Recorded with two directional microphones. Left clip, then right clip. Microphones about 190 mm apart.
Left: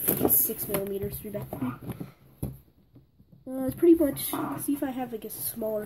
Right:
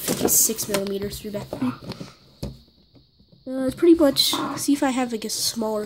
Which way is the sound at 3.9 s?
30° right (ahead or behind).